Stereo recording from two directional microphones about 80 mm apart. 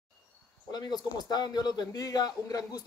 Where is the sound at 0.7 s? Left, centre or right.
Left.